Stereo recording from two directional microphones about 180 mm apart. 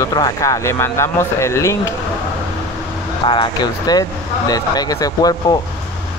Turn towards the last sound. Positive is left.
turn(degrees=20)  # may be behind; listen again after turning